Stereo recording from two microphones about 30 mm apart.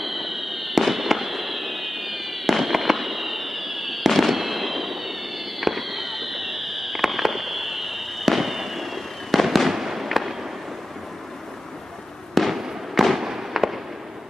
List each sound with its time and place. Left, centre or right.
0.0 s fireworks: centre
12.4 s fireworks: centre
13.2 s fireworks: centre